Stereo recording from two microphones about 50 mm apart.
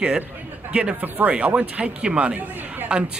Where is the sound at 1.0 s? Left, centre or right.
Right.